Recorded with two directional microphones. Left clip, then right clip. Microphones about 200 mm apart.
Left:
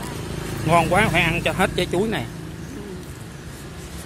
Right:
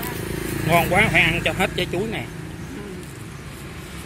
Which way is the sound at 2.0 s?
25° left (ahead or behind).